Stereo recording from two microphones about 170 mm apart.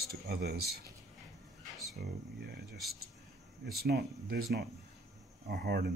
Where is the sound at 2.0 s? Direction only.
70° right (ahead or behind).